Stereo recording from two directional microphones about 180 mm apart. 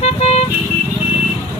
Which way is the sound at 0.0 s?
35° left (ahead or behind).